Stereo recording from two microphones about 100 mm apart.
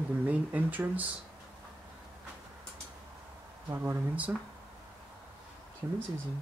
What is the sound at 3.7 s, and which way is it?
Speech, 20° right (ahead or behind).